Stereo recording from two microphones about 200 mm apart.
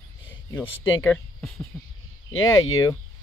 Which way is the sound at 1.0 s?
10° left (ahead or behind).